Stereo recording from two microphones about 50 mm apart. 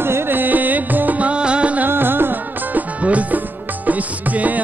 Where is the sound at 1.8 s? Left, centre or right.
Right.